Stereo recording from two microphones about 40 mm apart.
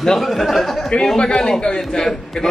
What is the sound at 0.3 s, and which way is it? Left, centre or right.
Speech, centre.